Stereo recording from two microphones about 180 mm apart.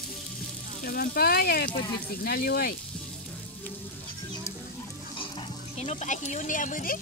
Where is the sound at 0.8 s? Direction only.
55° left (ahead or behind).